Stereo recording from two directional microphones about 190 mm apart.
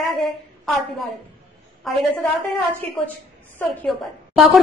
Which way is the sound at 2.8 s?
10° left (ahead or behind).